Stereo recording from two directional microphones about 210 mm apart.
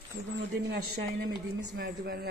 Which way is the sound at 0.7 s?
50° right (ahead or behind).